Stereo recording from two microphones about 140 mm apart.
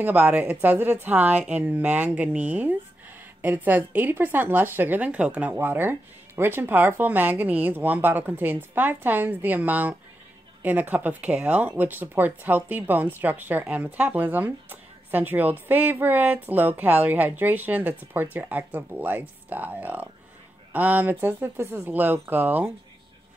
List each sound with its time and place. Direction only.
0.0 s speech: 15° right (ahead or behind)